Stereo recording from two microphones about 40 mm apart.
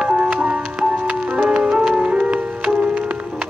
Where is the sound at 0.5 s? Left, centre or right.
Right.